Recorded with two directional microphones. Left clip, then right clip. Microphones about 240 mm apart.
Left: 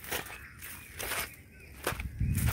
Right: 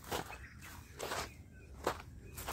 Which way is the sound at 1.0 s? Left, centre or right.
Left.